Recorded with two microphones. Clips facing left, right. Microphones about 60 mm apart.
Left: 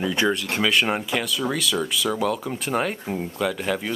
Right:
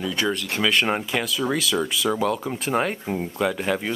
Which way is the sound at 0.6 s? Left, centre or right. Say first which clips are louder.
Even; centre.